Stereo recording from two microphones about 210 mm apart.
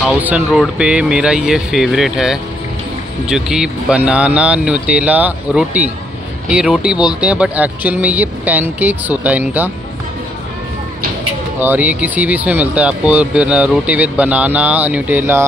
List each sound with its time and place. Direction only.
0.2 s speech: 5° right (ahead or behind)
11.6 s speech: 10° right (ahead or behind)